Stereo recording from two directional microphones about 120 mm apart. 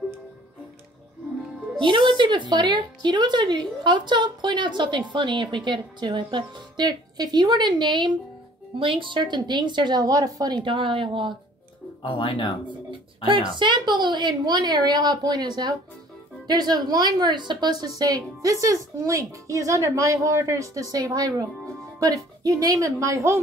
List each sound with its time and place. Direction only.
1.8 s a woman's voice: 45° right (ahead or behind)
12.0 s speech: 45° left (ahead or behind)
13.6 s a woman's voice: 40° right (ahead or behind); by 23.4 s 25° right (ahead or behind)